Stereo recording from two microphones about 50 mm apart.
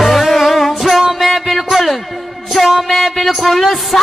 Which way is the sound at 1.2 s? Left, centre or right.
Centre.